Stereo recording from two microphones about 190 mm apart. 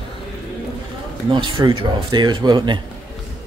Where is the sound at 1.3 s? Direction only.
25° right (ahead or behind).